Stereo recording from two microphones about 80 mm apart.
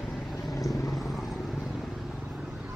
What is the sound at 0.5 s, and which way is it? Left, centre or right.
Vehicle, left.